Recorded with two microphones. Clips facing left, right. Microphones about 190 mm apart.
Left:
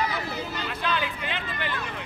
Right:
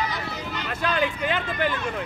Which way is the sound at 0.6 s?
45° right (ahead or behind).